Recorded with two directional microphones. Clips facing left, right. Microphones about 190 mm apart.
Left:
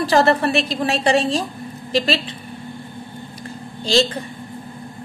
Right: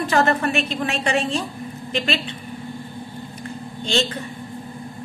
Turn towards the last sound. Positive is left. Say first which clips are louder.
# left 5 dB
turn(degrees=35)  # may be behind; listen again after turning